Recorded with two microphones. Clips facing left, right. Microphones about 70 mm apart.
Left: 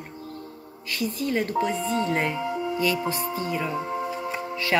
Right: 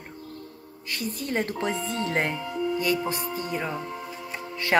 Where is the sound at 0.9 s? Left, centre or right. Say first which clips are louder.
Left 3 dB; right.